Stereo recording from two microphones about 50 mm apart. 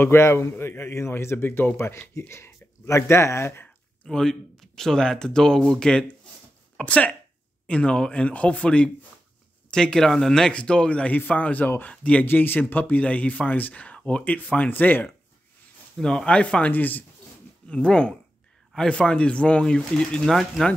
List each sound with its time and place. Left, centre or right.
0.0 s a man's voice: left
1.8 s a man's voice: left
4.1 s speech: centre
6.8 s speech: left
11.1 s speech: left
12.3 s speech: left
16.0 s speech: centre
16.3 s speech: left
16.7 s speech: left
17.6 s speech: centre